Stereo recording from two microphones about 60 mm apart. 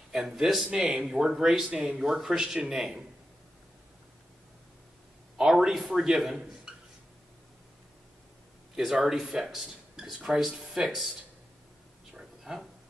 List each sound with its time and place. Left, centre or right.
0.1 s speech: centre
0.7 s speech: centre
1.0 s speech: centre
5.4 s speech: centre
8.7 s speech: centre
12.1 s a sound: centre